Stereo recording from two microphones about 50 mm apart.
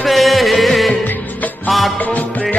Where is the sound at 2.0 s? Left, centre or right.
Left.